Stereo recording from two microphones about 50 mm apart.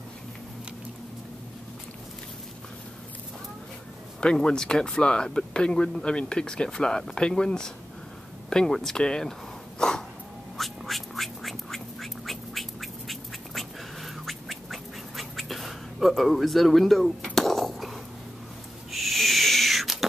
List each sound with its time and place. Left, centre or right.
4.2 s speech: centre
9.8 s a sound: centre
10.6 s quack: centre
18.9 s owl: centre